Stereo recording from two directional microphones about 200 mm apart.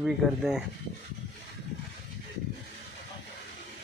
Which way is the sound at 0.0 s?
5° right (ahead or behind).